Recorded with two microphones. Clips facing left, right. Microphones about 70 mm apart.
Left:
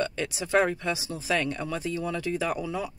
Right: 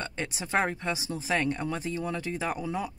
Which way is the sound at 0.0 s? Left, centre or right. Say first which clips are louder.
Left 5 dB; right.